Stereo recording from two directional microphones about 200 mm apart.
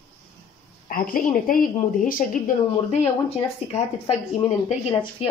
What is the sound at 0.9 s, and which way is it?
Speech, 45° left (ahead or behind).